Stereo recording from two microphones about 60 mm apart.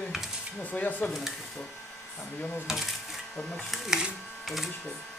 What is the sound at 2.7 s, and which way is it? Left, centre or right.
Speech, centre.